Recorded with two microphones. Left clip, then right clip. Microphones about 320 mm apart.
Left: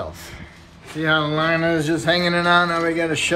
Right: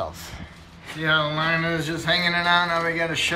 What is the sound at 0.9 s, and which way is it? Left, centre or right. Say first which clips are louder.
Speech: left 2 dB; centre.